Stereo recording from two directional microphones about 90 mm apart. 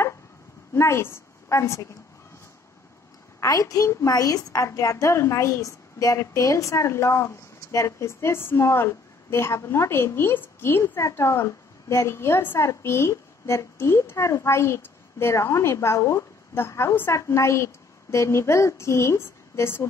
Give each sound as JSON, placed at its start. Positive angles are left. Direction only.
{"t": 0.7, "sound": "a woman's voice", "side_deg": 30}
{"t": 3.3, "sound": "a woman's voice", "side_deg": 40}